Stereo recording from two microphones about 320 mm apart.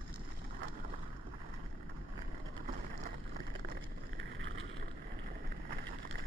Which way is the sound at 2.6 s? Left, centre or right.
Right.